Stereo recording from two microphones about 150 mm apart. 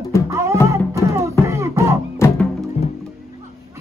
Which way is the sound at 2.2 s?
20° left (ahead or behind).